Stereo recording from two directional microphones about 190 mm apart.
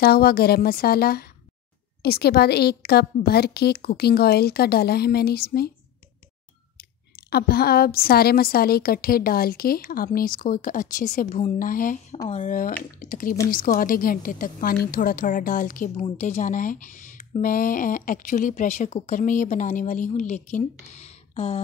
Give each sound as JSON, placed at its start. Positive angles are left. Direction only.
{"t": 0.0, "sound": "a woman's voice", "side_deg": 55}
{"t": 6.8, "sound": "a woman's voice", "side_deg": 55}